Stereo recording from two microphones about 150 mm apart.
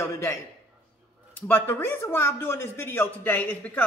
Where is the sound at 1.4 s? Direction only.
15° left (ahead or behind).